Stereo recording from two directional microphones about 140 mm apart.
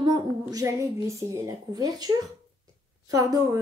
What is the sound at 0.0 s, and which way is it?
A woman's voice, 30° right (ahead or behind).